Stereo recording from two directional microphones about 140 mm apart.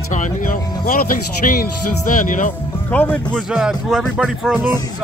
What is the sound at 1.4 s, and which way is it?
Speech, 70° left (ahead or behind).